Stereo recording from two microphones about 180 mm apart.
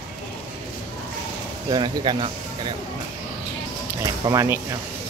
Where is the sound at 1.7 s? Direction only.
25° right (ahead or behind).